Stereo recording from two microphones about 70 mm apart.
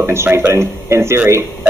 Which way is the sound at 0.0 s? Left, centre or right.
Right.